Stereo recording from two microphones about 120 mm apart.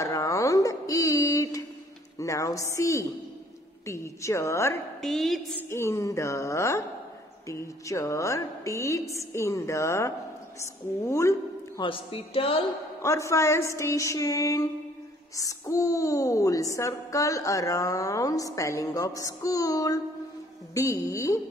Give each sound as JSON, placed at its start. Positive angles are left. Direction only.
{"t": 0.0, "sound": "a sound", "side_deg": 25}
{"t": 2.1, "sound": "a woman's voice", "side_deg": 25}
{"t": 5.0, "sound": "a woman's voice", "side_deg": 0}
{"t": 5.7, "sound": "a woman's voice", "side_deg": 25}
{"t": 11.8, "sound": "a woman's voice", "side_deg": 50}
{"t": 13.0, "sound": "a woman's voice", "side_deg": 25}